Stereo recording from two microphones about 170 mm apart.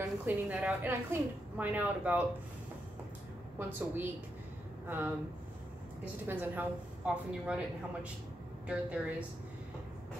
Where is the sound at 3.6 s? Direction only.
10° right (ahead or behind).